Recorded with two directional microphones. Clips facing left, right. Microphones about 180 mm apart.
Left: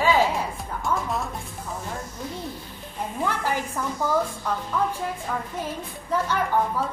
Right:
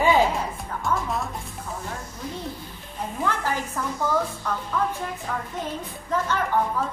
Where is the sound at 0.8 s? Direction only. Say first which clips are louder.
Even; centre (ahead or behind).